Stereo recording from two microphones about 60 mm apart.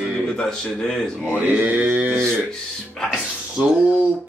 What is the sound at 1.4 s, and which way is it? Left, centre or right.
Speech, right.